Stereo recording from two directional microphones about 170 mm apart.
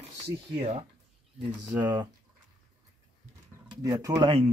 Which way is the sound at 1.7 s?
20° right (ahead or behind).